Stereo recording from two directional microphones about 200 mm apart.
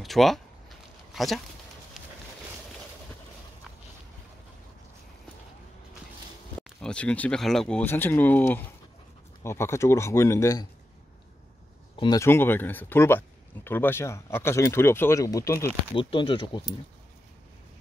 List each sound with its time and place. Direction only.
0.0 s a sound: centre (ahead or behind)
6.8 s speech: 5° left (ahead or behind)
12.0 s speech: 15° left (ahead or behind)
15.9 s speech: 25° left (ahead or behind)